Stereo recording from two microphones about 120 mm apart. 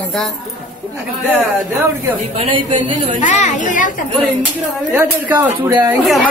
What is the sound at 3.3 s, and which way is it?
Speech, 90° left.